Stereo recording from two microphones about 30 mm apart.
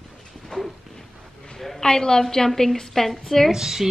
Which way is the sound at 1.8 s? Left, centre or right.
Left.